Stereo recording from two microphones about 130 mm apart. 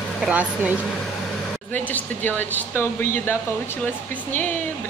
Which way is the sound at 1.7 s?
15° left (ahead or behind).